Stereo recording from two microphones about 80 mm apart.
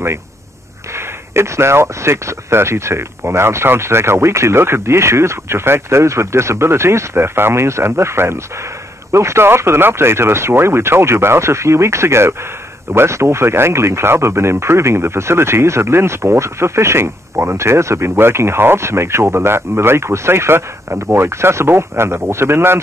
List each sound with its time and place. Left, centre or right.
0.9 s speech: right